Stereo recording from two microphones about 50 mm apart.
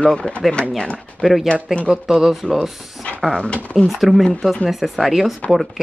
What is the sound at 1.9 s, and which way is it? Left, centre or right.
Speech, centre.